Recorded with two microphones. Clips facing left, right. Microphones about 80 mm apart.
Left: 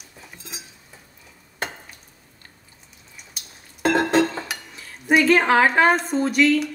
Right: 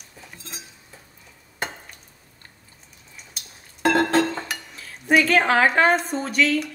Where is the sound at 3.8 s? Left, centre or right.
Left.